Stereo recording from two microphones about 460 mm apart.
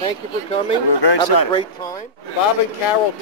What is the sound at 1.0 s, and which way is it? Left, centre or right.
Speech, left.